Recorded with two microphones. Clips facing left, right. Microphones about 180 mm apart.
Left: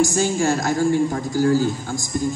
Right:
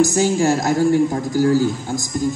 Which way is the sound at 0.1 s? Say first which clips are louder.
Right 3 dB; 15° right (ahead or behind).